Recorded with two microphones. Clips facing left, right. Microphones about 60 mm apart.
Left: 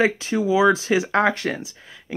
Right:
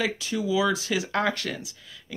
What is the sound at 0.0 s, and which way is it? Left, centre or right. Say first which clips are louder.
Speech: left 7 dB; left.